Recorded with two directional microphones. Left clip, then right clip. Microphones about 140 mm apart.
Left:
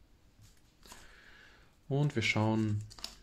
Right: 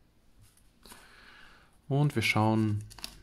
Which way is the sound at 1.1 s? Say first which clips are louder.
Right 3 dB; 30° right (ahead or behind).